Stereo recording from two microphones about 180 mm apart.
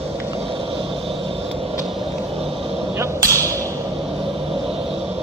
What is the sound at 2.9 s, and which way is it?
Hammer, 15° right (ahead or behind).